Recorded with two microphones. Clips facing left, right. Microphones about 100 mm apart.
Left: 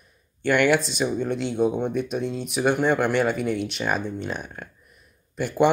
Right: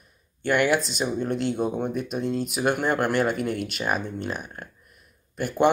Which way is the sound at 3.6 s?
5° right (ahead or behind).